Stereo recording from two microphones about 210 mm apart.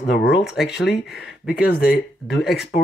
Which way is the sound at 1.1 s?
45° left (ahead or behind).